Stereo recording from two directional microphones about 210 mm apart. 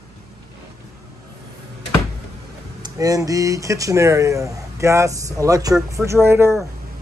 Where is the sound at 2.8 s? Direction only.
15° right (ahead or behind).